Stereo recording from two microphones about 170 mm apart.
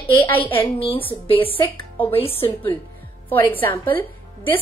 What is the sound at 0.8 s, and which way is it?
Speech, 30° left (ahead or behind).